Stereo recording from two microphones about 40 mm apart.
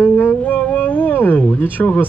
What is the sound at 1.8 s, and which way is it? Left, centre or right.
Speech, left.